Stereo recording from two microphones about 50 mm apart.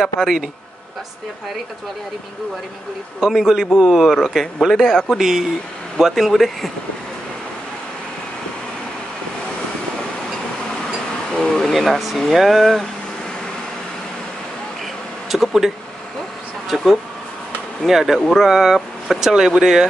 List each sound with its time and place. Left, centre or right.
0.0 s speech: centre
3.2 s speech: centre
4.1 s speech: centre
11.4 s speech: centre
15.2 s speech: centre